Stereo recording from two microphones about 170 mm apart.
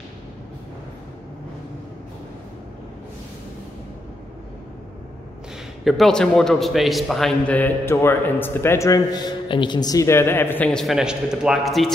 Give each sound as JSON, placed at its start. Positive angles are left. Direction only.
{"t": 5.9, "sound": "a man's voice", "side_deg": 0}